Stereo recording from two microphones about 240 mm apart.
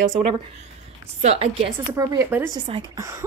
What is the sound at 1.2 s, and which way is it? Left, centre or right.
A woman's voice, right.